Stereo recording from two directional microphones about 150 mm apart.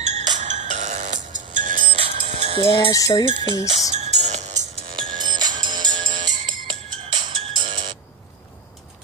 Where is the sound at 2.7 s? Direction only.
35° left (ahead or behind).